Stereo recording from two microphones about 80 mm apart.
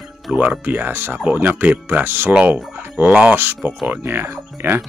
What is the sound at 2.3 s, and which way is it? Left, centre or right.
Speech, centre.